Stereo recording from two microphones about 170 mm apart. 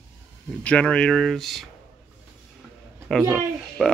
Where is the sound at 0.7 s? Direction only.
5° left (ahead or behind).